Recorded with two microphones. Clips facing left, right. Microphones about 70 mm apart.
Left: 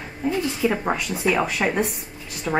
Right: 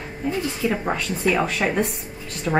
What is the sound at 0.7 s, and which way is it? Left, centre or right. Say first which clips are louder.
A woman's voice: even; centre.